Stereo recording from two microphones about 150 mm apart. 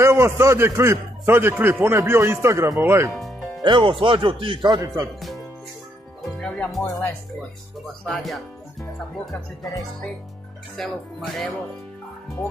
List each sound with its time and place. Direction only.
0.0 s a man's voice: 20° right (ahead or behind)
3.1 s music: centre (ahead or behind)
3.6 s a man's voice: 35° right (ahead or behind)
6.2 s speech: 5° left (ahead or behind)
6.8 s speech: 20° left (ahead or behind)
7.8 s speech: centre (ahead or behind)
10.8 s speech: centre (ahead or behind)